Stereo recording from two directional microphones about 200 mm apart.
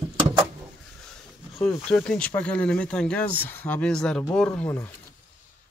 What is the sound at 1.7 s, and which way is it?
Speech, 5° left (ahead or behind).